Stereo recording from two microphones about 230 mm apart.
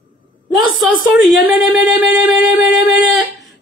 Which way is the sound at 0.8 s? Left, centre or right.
Centre.